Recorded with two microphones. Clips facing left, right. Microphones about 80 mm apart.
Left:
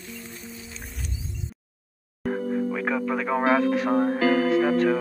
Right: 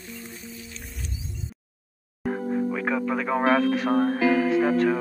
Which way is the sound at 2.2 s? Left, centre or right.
Centre.